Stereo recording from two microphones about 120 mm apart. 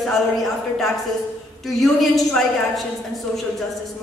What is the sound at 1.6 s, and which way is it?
A man's voice, centre (ahead or behind).